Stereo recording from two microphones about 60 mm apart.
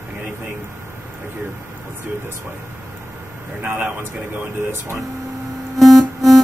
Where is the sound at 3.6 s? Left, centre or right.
Right.